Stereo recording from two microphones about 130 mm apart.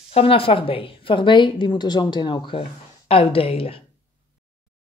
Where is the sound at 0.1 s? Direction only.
45° left (ahead or behind).